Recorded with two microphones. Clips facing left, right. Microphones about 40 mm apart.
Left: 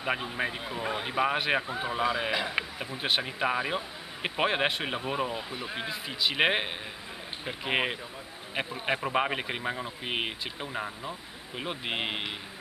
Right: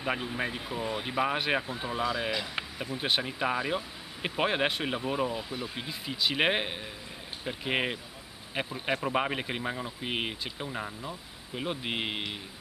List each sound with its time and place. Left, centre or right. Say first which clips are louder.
0.0 s speech: left 1 dB; centre
3.0 s speech: left 1 dB; centre